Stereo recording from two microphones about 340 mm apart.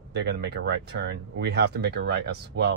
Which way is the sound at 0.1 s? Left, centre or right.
Right.